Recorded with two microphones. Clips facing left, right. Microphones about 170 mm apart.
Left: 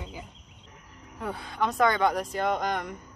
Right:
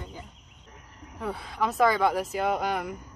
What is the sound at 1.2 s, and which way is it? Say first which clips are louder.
Speech: even; centre (ahead or behind).